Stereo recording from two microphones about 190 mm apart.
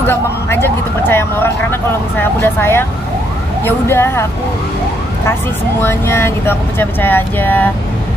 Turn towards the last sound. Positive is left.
turn(degrees=10)  # may be behind; listen again after turning